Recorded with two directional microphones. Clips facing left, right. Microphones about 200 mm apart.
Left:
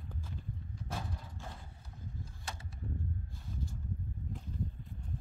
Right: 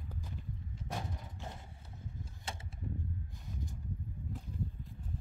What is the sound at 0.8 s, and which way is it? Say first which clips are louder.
Vehicle: right 1 dB; 20° right (ahead or behind).